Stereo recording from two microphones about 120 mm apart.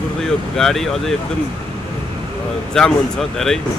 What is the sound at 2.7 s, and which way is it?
Speech, 5° left (ahead or behind).